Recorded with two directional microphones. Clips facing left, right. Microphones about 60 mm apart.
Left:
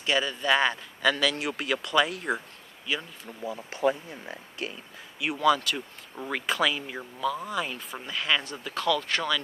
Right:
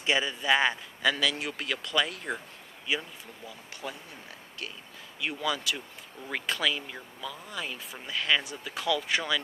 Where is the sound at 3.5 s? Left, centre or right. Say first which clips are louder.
Left 15 dB; left.